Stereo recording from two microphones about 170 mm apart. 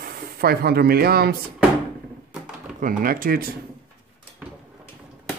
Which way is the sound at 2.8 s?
55° right (ahead or behind).